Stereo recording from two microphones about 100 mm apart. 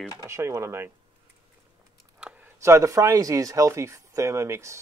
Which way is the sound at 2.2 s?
15° right (ahead or behind).